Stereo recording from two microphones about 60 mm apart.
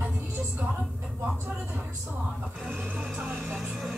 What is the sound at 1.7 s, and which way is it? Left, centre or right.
Speech, right.